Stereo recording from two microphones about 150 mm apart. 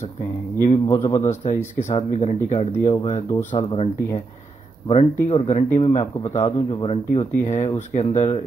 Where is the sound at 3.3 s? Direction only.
35° left (ahead or behind).